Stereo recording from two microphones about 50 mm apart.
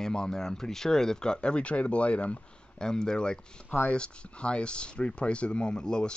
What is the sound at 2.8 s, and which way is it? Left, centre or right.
Speech, centre.